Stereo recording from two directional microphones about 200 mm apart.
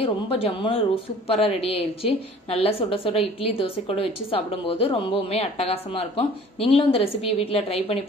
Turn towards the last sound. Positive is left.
turn(degrees=30)  # may be behind; listen again after turning